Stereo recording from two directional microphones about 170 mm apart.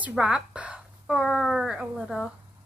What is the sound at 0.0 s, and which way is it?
A woman's voice, 5° right (ahead or behind).